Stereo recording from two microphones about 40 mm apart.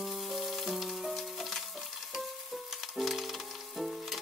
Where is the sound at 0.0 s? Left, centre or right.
Centre.